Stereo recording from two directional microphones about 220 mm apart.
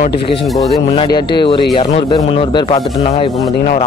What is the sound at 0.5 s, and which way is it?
Speech, 20° left (ahead or behind).